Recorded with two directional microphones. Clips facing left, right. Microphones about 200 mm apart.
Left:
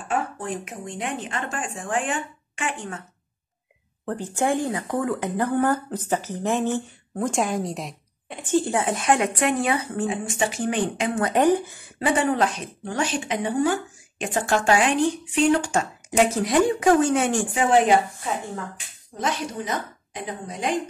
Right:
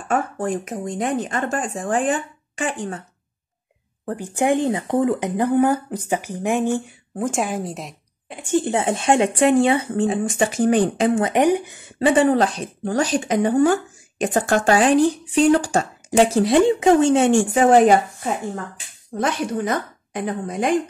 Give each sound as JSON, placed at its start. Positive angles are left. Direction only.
{"t": 0.1, "sound": "a woman's voice", "side_deg": -45}
{"t": 4.0, "sound": "speech", "side_deg": -15}
{"t": 8.5, "sound": "speech", "side_deg": -20}
{"t": 10.4, "sound": "a woman's voice", "side_deg": -45}
{"t": 11.1, "sound": "speech", "side_deg": -20}
{"t": 12.0, "sound": "a woman's voice", "side_deg": -30}
{"t": 17.6, "sound": "a woman's voice", "side_deg": -45}